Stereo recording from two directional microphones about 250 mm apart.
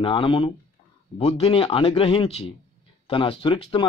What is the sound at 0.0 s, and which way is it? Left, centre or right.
A man's voice, left.